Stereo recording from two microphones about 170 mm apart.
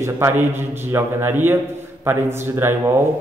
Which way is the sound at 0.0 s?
15° right (ahead or behind).